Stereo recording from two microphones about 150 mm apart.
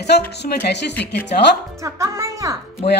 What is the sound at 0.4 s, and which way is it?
Speech, 70° left (ahead or behind).